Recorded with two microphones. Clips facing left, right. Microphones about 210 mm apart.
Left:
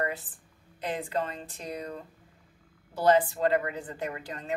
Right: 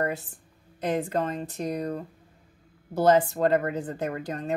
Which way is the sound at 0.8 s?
45° right (ahead or behind).